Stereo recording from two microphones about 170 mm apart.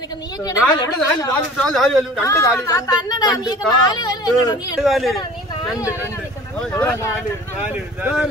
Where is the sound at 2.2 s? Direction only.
15° left (ahead or behind).